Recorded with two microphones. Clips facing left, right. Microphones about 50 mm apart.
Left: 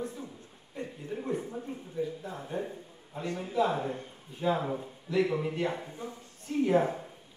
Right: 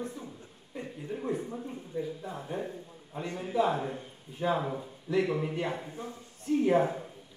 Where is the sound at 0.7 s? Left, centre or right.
Centre.